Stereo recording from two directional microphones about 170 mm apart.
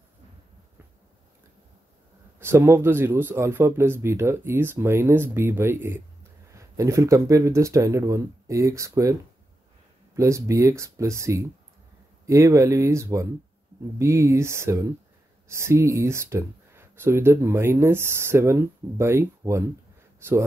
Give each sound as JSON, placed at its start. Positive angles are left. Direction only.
{"t": 2.3, "sound": "speech", "side_deg": -15}
{"t": 10.1, "sound": "speech", "side_deg": -20}